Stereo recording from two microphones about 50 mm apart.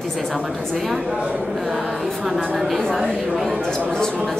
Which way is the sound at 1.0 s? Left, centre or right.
Centre.